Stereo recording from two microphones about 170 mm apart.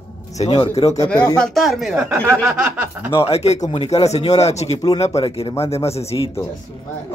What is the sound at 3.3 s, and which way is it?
Speech, 40° left (ahead or behind).